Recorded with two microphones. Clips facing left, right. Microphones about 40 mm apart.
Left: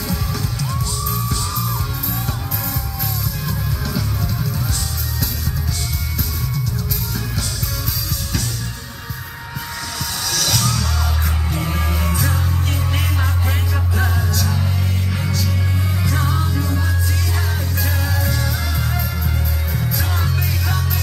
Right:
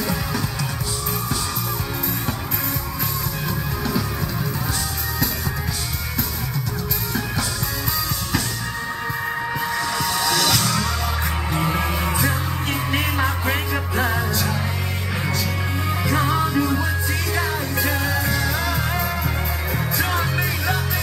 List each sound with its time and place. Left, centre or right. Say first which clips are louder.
3.4 s music: right 1 dB; right
10.2 s music: left 1 dB; centre
17.7 s music: right 2 dB; centre
18.9 s music: right 2 dB; right
19.9 s music: right 3 dB; centre